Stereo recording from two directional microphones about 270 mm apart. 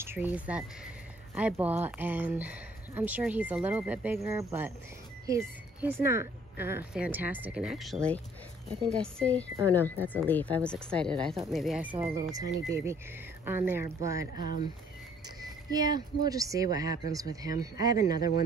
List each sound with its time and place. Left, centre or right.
0.0 s speech: centre
11.9 s speech: centre
14.3 s speech: left
15.7 s speech: centre